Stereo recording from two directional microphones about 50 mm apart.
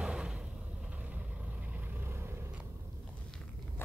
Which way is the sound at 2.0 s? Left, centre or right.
Right.